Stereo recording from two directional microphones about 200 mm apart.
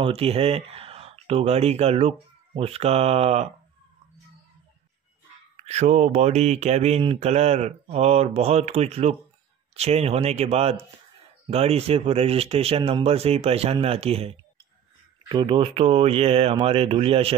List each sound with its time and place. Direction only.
0.0 s speech: 30° right (ahead or behind)
5.6 s speech: 35° right (ahead or behind)